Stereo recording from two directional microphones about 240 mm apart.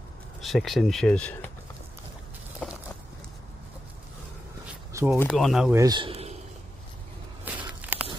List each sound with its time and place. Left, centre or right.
0.4 s speech: centre
4.9 s speech: centre
5.2 s speech: centre
5.8 s speech: centre
7.4 s walk: centre